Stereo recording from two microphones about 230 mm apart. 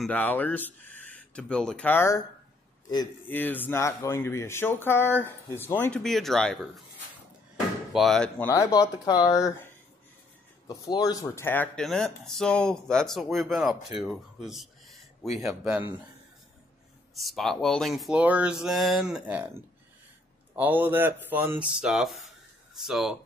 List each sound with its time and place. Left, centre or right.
0.0 s speech: centre
7.9 s speech: centre
8.5 s speech: centre
10.7 s speech: centre
17.1 s speech: centre
20.5 s speech: centre